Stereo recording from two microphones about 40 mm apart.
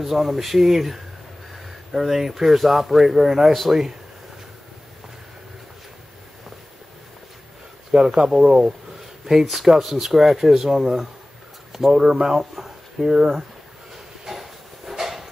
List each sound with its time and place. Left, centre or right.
0.0 s speech: centre
7.9 s speech: centre
9.2 s speech: centre
14.2 s a sound: centre